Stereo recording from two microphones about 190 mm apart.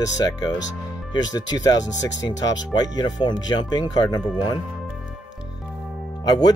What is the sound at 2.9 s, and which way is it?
Speech, 20° left (ahead or behind).